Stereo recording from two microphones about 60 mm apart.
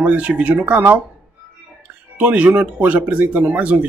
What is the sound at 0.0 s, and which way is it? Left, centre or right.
Speech, right.